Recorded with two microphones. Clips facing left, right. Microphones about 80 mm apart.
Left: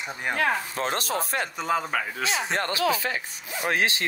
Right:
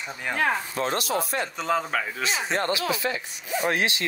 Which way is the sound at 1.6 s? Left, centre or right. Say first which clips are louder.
Right 1 dB; centre.